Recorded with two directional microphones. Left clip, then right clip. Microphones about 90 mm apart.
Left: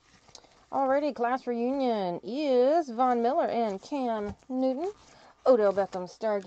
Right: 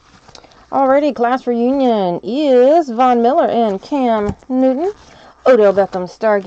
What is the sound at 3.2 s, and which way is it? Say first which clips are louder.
Speech: right 14 dB; centre (ahead or behind).